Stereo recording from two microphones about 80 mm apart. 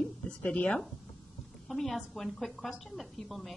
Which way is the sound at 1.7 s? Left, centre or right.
Centre.